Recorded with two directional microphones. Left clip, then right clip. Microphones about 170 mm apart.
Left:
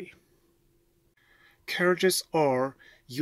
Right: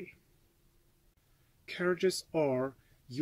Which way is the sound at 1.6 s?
20° left (ahead or behind).